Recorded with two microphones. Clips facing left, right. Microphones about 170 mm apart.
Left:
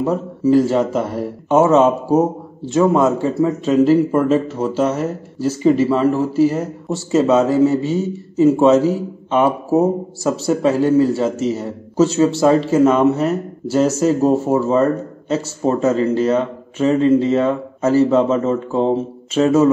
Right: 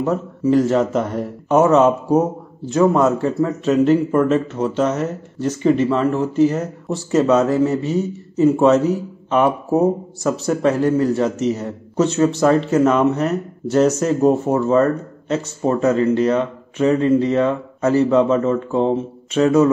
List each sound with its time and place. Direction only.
0.0 s a man's voice: centre (ahead or behind)
16.7 s speech: 25° left (ahead or behind)
17.3 s a man's voice: centre (ahead or behind)